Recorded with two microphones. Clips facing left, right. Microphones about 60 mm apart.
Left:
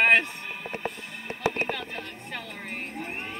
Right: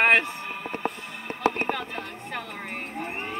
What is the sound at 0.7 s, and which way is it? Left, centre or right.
Music, right.